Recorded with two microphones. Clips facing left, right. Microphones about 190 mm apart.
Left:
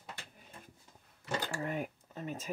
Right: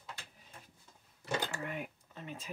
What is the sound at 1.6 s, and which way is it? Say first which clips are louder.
Speech: left 4 dB; 40° left (ahead or behind).